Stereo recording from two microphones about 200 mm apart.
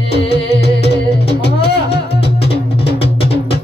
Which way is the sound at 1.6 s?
30° left (ahead or behind).